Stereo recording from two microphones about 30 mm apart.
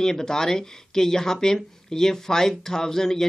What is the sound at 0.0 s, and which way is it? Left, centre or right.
Speech, centre.